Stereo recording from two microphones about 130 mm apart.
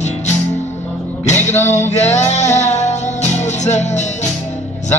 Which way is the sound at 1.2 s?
60° left (ahead or behind).